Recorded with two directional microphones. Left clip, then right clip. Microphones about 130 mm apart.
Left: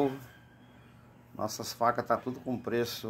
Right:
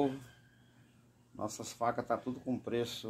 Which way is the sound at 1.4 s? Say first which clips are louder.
Left 6 dB; 20° right (ahead or behind).